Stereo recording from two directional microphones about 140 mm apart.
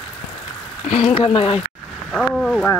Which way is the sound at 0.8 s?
45° left (ahead or behind).